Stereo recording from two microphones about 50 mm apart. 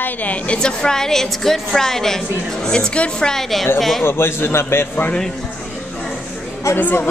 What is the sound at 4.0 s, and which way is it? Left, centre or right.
Speech, left.